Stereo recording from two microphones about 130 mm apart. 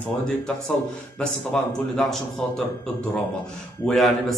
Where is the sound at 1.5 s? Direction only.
Centre (ahead or behind).